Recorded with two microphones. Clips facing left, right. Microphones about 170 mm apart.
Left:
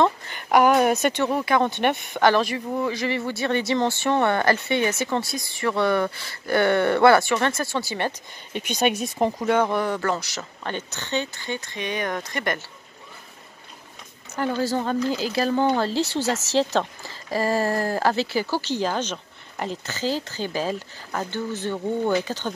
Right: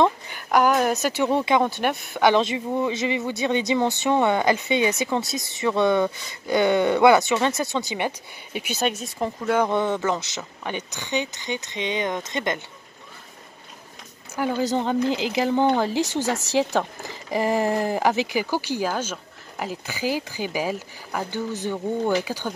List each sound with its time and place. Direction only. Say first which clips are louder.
0.0 s a woman's voice: right 1 dB; 5° right (ahead or behind)
1.2 s speech: right 5 dB; 20° right (ahead or behind)
1.6 s speech: left 1 dB; centre (ahead or behind)
2.3 s speech: right 1 dB; 20° right (ahead or behind)
8.5 s speech: left 1 dB; 5° right (ahead or behind)
8.8 s speech: left 4 dB; 15° left (ahead or behind)
9.7 s speech: right 1 dB; 20° right (ahead or behind)
14.3 s speech: right 1 dB; 10° right (ahead or behind)